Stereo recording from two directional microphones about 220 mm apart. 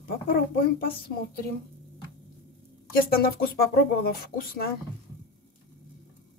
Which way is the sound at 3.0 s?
45° left (ahead or behind).